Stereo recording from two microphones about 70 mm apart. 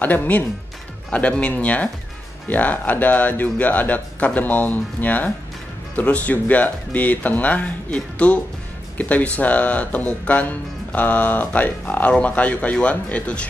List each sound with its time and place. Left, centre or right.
0.0 s speech: left